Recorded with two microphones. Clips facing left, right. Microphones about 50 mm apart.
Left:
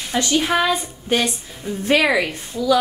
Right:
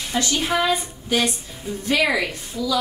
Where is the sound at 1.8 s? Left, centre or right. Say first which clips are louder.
Left 3 dB; left.